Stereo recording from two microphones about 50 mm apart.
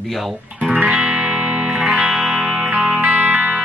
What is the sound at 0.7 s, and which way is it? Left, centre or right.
Music, right.